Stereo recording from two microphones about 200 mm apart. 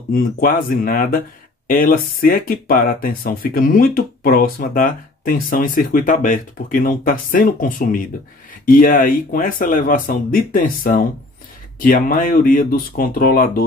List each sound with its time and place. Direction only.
0.1 s speech: 45° left (ahead or behind)